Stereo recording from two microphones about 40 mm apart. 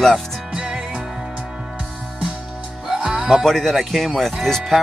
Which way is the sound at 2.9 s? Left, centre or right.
Centre.